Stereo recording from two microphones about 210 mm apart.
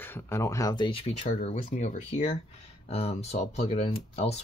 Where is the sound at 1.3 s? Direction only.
40° left (ahead or behind).